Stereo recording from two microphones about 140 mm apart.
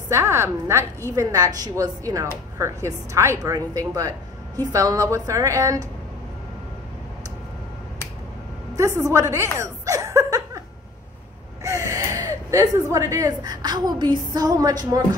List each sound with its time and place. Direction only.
0.1 s a woman's voice: 20° right (ahead or behind)
8.7 s a sound: 20° right (ahead or behind)
11.9 s speech: 20° right (ahead or behind)